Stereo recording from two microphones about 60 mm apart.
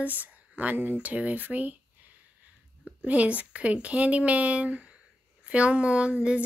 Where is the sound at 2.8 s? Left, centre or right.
Right.